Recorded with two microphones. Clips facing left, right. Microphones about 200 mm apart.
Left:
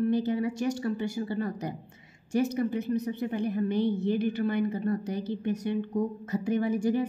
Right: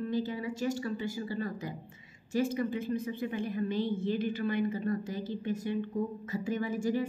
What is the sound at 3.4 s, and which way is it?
A woman's voice, 60° left (ahead or behind).